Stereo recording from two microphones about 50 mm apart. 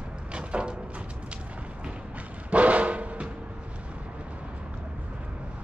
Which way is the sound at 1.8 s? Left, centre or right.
Right.